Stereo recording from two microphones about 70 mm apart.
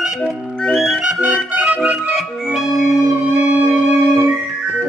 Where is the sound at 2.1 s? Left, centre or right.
Centre.